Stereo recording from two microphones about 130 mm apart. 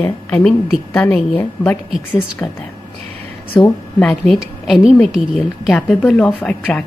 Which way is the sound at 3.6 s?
10° left (ahead or behind).